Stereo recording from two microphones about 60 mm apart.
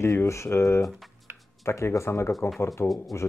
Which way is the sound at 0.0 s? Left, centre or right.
Left.